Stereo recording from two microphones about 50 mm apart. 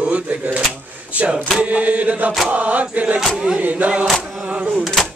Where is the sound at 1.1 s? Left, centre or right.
Right.